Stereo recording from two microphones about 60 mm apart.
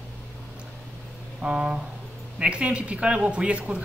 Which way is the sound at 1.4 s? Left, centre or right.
Centre.